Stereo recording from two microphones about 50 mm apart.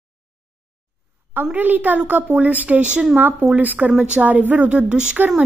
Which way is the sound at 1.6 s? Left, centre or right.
Right.